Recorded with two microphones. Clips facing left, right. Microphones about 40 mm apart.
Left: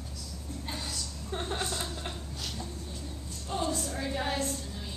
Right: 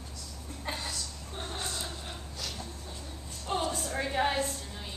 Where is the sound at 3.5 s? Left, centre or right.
Right.